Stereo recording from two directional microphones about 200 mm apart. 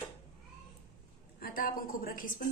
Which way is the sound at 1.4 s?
45° left (ahead or behind).